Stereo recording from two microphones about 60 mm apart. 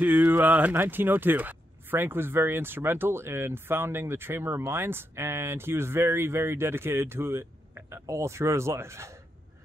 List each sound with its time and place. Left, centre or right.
0.0 s speech: right